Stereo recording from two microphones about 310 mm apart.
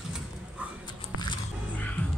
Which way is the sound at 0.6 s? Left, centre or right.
Centre.